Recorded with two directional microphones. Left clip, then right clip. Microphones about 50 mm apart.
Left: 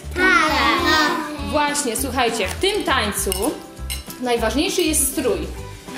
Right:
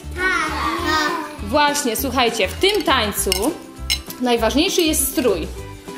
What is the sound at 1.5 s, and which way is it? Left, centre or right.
A woman's voice, centre.